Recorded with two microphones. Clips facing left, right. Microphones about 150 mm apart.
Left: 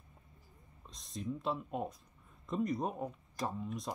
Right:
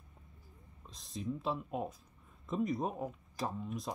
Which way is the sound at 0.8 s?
Centre (ahead or behind).